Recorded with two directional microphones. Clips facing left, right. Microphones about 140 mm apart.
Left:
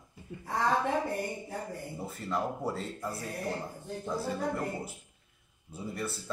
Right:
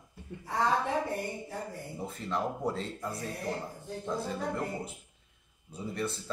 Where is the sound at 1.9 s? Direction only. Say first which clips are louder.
Even; 5° left (ahead or behind).